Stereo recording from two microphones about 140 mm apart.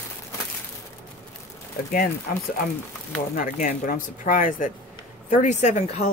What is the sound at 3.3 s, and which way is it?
Speech, 75° left (ahead or behind).